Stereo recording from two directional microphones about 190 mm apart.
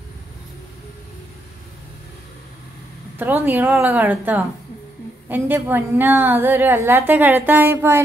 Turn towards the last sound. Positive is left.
turn(degrees=-15)  # may be behind; listen again after turning